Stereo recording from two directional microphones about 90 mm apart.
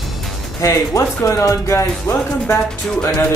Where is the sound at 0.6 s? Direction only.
35° left (ahead or behind).